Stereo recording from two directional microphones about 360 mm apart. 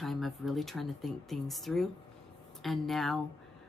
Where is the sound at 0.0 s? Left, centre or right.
Centre.